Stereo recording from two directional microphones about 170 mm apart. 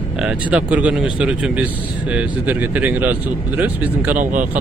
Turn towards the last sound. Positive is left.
turn(degrees=-50)  # may be behind; listen again after turning